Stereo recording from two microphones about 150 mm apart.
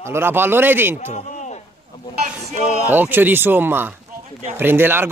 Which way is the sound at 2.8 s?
10° right (ahead or behind).